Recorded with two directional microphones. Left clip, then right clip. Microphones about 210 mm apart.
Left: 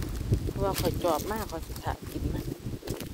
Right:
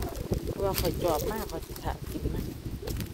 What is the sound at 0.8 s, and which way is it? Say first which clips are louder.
Speech: left 1 dB; centre (ahead or behind).